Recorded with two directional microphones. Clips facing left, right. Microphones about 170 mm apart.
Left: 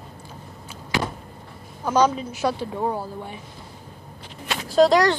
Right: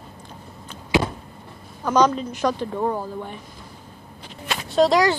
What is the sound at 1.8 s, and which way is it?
A woman's voice, 10° left (ahead or behind).